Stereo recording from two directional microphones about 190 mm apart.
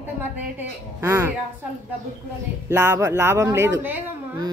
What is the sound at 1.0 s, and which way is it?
Speech, 15° right (ahead or behind).